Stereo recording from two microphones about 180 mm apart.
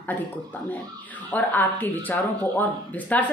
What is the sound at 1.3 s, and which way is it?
Speech, 10° left (ahead or behind).